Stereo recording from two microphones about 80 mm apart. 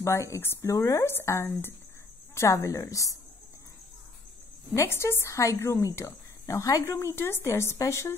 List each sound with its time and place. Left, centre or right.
0.0 s speech: left
0.7 s speech: left
4.7 s speech: left